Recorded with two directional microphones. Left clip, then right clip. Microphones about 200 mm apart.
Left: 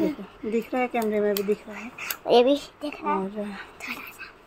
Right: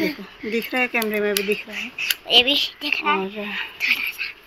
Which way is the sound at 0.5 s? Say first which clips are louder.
Right 4 dB; 5° right (ahead or behind).